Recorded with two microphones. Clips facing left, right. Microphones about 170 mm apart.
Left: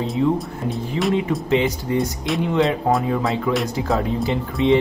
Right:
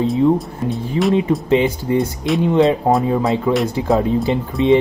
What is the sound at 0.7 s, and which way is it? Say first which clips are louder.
Speech: right 4 dB; centre (ahead or behind).